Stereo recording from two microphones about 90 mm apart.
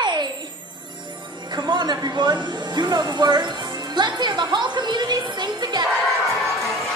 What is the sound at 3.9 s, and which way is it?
Music, 55° right (ahead or behind).